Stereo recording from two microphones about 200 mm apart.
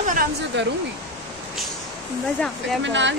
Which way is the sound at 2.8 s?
65° right (ahead or behind).